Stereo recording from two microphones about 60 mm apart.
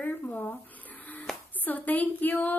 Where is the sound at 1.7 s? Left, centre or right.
Left.